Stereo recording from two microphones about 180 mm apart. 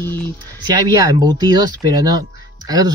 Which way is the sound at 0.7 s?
25° right (ahead or behind).